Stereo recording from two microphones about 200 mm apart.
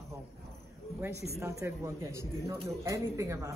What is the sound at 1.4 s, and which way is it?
Speech, 15° right (ahead or behind).